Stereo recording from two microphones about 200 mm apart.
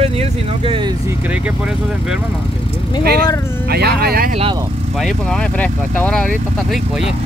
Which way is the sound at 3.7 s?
50° right (ahead or behind).